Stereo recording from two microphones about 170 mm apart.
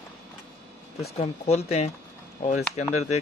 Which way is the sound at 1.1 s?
40° left (ahead or behind).